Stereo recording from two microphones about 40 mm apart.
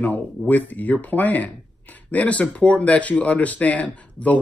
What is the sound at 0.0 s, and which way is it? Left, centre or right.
Speech, left.